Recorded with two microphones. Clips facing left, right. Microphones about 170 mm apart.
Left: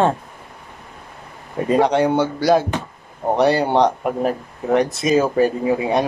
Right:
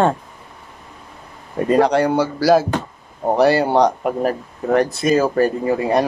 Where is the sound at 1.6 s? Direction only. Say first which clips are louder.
Right 1 dB; centre (ahead or behind).